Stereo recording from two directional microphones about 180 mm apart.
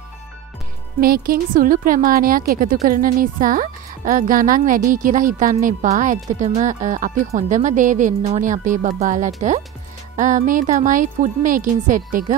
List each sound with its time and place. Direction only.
1.0 s a woman's voice: 55° right (ahead or behind)